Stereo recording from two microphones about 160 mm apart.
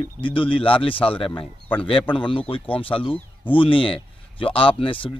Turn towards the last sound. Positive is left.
turn(degrees=35)  # may be behind; listen again after turning